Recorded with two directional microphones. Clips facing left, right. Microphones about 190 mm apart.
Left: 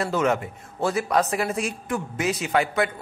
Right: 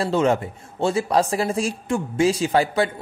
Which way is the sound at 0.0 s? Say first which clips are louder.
Right 3 dB; 30° right (ahead or behind).